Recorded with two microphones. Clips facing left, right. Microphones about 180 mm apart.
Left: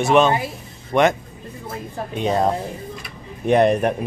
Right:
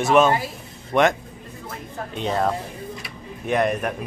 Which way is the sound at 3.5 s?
30° left (ahead or behind).